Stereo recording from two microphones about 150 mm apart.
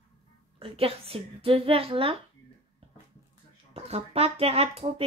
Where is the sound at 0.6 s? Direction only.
40° right (ahead or behind).